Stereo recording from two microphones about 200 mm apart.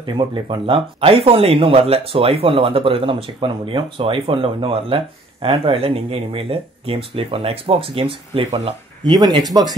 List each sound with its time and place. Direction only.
0.0 s speech: 25° right (ahead or behind)